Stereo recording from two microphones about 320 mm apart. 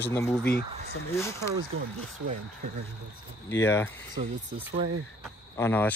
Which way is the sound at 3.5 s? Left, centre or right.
Centre.